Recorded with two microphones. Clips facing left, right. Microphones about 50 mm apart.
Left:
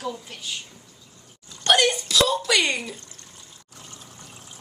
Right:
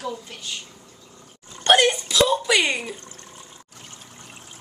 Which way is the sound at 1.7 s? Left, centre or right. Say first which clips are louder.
Right 2 dB; right.